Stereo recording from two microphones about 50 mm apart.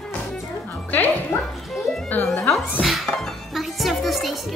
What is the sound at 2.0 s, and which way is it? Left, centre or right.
Music, left.